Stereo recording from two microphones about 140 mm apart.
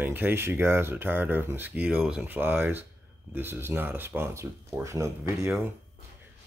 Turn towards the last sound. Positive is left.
turn(degrees=-20)  # may be behind; listen again after turning